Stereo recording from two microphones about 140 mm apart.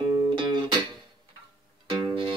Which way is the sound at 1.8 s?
35° right (ahead or behind).